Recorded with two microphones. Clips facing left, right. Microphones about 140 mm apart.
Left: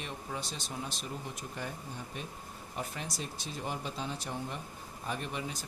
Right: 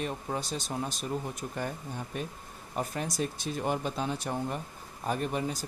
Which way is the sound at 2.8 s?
45° right (ahead or behind).